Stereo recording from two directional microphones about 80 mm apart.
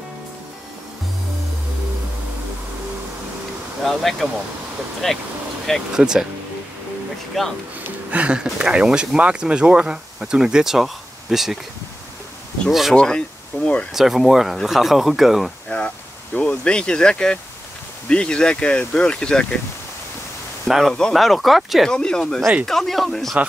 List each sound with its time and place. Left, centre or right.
3.8 s speech: centre
5.9 s speech: centre
7.3 s speech: centre
8.1 s speech: centre
12.6 s speech: centre
12.9 s speech: centre
13.5 s speech: left
13.9 s speech: centre
16.3 s speech: centre
20.6 s speech: centre